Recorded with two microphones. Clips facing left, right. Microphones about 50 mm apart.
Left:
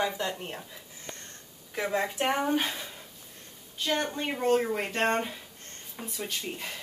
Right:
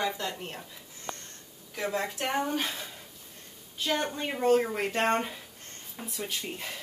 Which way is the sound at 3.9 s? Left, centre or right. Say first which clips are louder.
Even; centre.